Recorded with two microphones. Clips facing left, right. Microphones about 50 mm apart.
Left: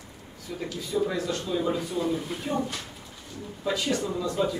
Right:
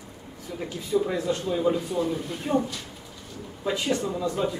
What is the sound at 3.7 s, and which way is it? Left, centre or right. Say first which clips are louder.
Speech: right 1 dB; right.